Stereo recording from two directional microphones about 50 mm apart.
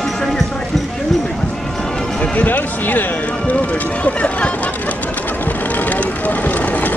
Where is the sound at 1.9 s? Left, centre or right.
Left.